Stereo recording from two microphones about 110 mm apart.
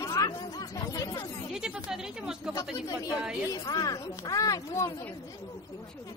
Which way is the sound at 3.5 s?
35° left (ahead or behind).